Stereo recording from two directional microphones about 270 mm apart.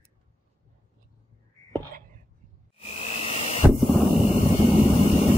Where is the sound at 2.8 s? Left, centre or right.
Left.